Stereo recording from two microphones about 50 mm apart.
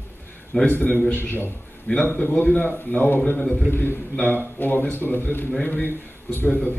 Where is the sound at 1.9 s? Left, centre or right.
Left.